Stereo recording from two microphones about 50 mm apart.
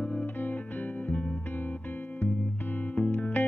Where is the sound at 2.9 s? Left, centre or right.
Left.